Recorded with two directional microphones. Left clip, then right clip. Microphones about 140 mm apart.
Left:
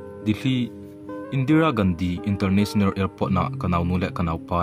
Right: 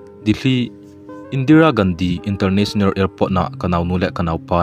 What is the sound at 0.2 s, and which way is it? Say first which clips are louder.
Speech: right 7 dB; 40° right (ahead or behind).